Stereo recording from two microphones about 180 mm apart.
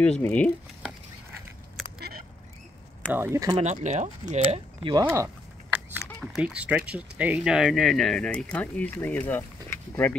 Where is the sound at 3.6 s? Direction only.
40° right (ahead or behind).